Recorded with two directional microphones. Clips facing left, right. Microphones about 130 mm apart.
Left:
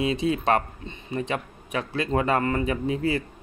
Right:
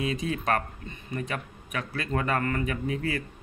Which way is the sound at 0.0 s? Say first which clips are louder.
Left 5 dB; 25° left (ahead or behind).